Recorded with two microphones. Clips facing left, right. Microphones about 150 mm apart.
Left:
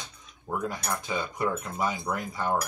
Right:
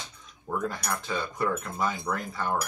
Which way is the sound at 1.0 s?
15° left (ahead or behind).